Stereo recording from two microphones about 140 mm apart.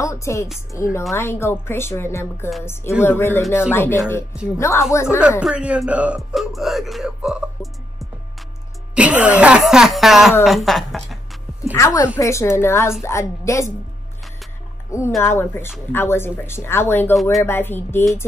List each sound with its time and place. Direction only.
0.0 s a woman's voice: 20° left (ahead or behind)
5.4 s speech: 5° right (ahead or behind)
11.7 s a woman's voice: 25° left (ahead or behind)
14.9 s speech: 20° left (ahead or behind)